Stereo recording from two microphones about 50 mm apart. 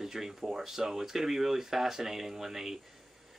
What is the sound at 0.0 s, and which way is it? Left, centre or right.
Speech, centre.